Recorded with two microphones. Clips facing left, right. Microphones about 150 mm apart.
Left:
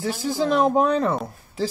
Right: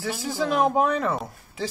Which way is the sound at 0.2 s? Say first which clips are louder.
Left 3 dB; 35° left (ahead or behind).